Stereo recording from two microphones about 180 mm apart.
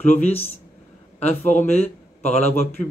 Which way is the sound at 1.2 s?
40° left (ahead or behind).